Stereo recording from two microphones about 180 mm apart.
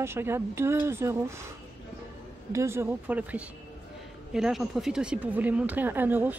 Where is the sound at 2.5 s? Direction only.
15° right (ahead or behind).